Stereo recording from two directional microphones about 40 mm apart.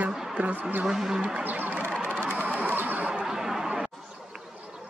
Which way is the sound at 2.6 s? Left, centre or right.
Right.